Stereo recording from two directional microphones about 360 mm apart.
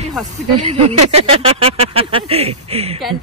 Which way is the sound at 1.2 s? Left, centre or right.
Centre.